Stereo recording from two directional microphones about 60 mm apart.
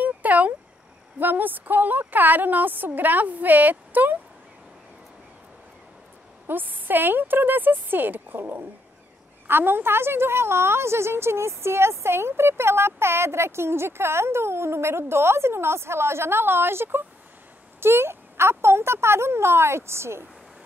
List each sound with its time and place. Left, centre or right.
0.0 s a sound: right
1.2 s a woman's voice: right
6.4 s a woman's voice: right